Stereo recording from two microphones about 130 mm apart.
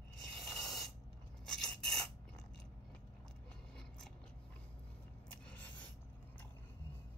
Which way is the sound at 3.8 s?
5° left (ahead or behind).